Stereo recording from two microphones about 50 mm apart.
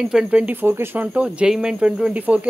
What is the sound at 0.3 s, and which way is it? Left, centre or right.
Speech, right.